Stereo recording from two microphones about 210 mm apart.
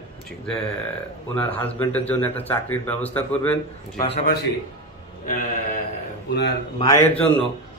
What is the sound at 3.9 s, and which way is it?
Speech, 25° left (ahead or behind).